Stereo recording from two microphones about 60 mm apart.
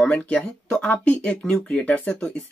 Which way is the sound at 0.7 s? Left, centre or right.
Left.